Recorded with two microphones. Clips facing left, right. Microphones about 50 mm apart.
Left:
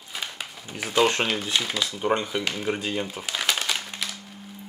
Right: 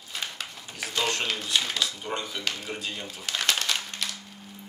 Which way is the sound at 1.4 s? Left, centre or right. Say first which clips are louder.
Left 1 dB; centre.